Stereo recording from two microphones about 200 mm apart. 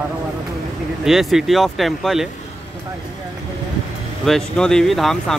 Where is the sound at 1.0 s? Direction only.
Centre (ahead or behind).